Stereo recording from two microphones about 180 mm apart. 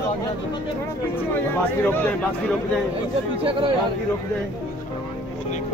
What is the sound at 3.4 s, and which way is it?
Speech, 30° right (ahead or behind).